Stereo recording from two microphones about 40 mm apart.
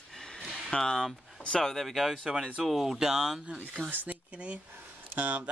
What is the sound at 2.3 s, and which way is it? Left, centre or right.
Speech, right.